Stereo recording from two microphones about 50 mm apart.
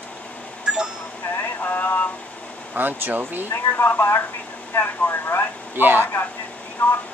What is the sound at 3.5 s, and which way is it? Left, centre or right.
Speech, left.